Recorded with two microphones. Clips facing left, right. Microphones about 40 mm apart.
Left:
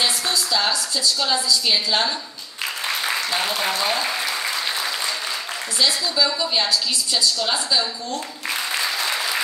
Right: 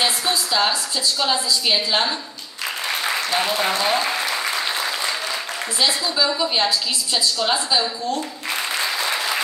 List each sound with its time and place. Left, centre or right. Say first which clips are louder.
0.0 s a woman's voice: right 1 dB; centre
3.3 s speech: right 2 dB; centre
3.9 s applause: right 2 dB; centre
5.8 s a woman's voice: even; centre
8.5 s applause: even; centre